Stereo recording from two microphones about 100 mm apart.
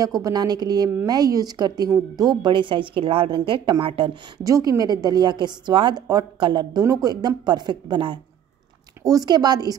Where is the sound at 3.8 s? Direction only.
65° right (ahead or behind).